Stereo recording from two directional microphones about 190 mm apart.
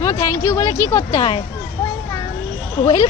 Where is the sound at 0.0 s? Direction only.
15° left (ahead or behind).